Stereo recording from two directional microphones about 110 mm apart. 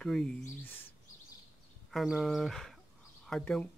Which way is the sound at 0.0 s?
5° left (ahead or behind).